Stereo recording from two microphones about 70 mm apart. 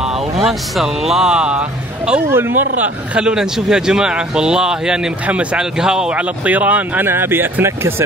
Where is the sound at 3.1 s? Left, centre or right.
Centre; by 8.0 s right.